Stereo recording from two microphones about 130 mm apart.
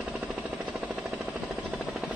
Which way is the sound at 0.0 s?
10° right (ahead or behind).